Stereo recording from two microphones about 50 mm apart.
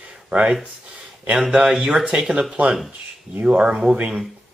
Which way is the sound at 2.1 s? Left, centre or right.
Right.